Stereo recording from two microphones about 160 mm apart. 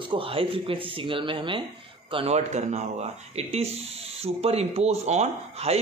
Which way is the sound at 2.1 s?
40° right (ahead or behind).